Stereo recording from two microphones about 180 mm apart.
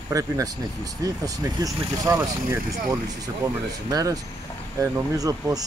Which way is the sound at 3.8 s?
20° right (ahead or behind).